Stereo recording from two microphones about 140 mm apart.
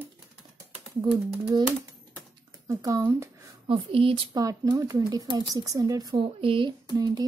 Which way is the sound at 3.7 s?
40° right (ahead or behind).